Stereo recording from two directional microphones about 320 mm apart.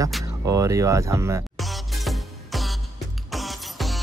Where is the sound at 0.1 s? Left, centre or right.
Centre.